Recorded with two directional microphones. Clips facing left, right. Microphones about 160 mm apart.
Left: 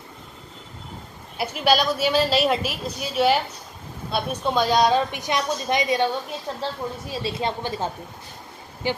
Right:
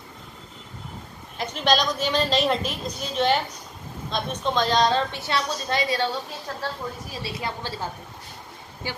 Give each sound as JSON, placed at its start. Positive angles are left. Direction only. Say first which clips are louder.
{"t": 1.4, "sound": "a woman's voice", "louder": "left 2 dB", "side_deg": 10}